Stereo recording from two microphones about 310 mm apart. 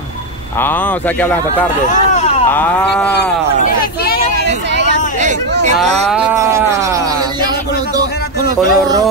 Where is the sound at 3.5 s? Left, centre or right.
Left.